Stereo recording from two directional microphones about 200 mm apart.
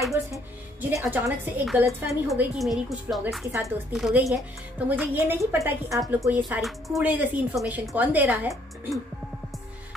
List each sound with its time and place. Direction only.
0.1 s a woman's voice: 10° right (ahead or behind)
3.5 s a woman's voice: 15° right (ahead or behind)
3.9 s a woman's voice: centre (ahead or behind)